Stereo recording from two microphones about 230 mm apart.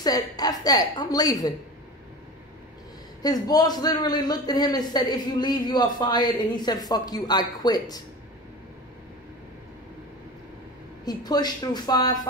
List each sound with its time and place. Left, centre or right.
0.0 s a man's voice: centre
3.2 s a man's voice: centre
11.1 s a man's voice: centre